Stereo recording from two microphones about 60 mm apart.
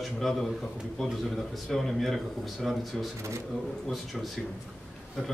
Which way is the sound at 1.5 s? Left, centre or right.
Centre.